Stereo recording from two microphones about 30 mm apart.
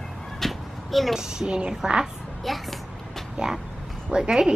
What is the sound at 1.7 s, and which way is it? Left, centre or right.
Speech, right.